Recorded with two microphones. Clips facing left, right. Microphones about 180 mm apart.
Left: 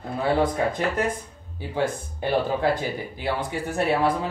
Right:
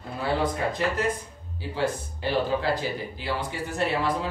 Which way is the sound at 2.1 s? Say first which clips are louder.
Left 3 dB; 55° left (ahead or behind).